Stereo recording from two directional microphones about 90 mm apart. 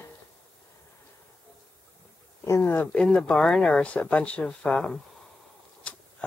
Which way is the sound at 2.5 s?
30° left (ahead or behind).